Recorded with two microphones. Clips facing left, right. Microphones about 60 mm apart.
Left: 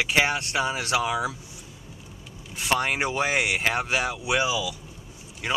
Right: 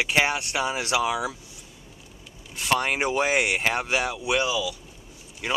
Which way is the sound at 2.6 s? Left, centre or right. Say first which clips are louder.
Right 1 dB; centre.